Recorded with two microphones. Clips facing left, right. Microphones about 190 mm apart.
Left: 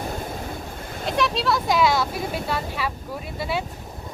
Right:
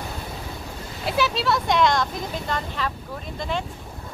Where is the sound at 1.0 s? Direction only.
5° right (ahead or behind).